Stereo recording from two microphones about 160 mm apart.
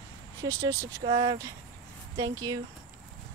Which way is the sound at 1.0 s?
30° right (ahead or behind).